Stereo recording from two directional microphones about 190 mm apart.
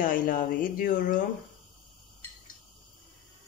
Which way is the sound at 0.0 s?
45° left (ahead or behind).